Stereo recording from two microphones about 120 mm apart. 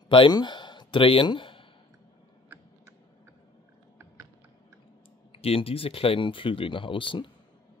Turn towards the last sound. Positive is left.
turn(degrees=45)  # may be behind; listen again after turning